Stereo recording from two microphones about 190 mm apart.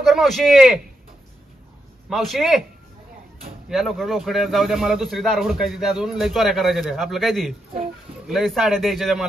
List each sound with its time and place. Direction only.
0.0 s a man's voice: centre (ahead or behind)
2.0 s a man's voice: centre (ahead or behind)
3.6 s a man's voice: centre (ahead or behind)